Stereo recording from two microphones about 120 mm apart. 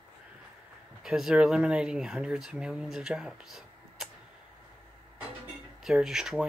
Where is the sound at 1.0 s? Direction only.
5° right (ahead or behind).